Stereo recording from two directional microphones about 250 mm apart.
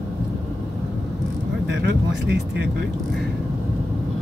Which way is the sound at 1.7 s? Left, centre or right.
Right.